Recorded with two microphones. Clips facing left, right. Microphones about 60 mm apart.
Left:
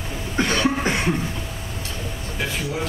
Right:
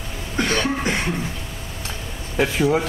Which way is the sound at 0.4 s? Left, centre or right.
Centre.